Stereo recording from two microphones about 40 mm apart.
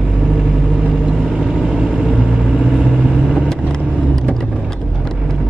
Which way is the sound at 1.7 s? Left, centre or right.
Centre.